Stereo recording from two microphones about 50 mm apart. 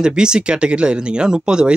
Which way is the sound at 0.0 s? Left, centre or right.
Centre.